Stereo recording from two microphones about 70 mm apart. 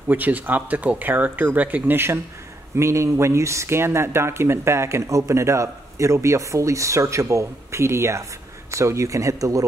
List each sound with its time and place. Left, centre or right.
0.1 s speech: right
2.8 s speech: right